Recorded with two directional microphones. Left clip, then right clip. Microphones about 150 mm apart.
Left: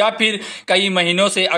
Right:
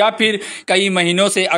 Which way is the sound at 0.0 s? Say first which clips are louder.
Right 2 dB; 50° right (ahead or behind).